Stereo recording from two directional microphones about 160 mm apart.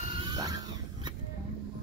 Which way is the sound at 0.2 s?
25° right (ahead or behind).